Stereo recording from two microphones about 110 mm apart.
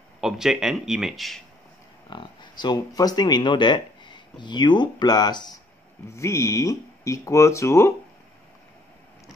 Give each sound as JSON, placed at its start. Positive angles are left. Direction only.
{"t": 0.2, "sound": "speech", "side_deg": -5}
{"t": 2.0, "sound": "speech", "side_deg": 45}
{"t": 6.1, "sound": "speech", "side_deg": 25}